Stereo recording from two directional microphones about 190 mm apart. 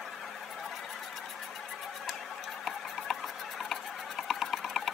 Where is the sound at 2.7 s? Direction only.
Centre (ahead or behind).